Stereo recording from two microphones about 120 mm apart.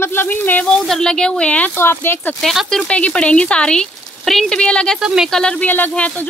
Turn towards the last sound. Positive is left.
turn(degrees=15)  # may be behind; listen again after turning